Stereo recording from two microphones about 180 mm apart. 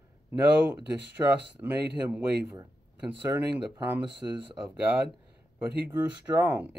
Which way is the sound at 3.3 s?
15° right (ahead or behind).